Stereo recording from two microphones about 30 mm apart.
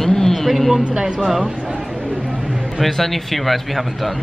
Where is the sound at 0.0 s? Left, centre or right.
Centre.